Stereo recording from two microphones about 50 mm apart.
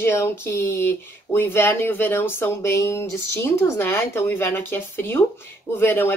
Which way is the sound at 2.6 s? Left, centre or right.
Left.